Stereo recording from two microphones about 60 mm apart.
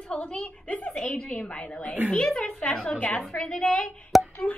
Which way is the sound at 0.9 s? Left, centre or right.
Centre.